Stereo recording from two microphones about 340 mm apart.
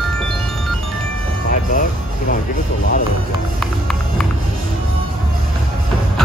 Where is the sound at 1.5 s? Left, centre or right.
Left.